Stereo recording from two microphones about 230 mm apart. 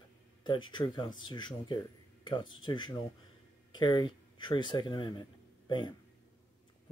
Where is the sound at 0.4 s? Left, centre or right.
Centre.